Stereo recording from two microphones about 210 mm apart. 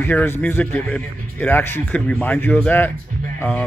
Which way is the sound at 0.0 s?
10° left (ahead or behind).